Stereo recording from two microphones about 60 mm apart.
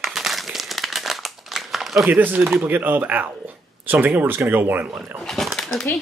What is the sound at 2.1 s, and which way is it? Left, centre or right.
Speech, right.